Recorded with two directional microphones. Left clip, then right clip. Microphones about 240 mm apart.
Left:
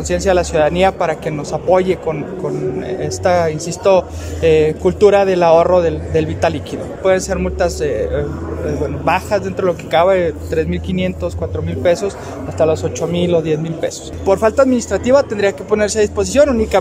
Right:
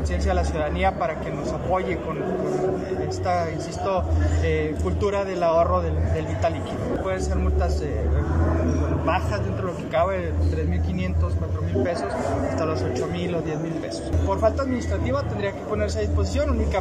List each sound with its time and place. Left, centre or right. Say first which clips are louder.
0.1 s speech: left 13 dB; left
3.1 s speech: left 12 dB; left
9.0 s speech: left 11 dB; left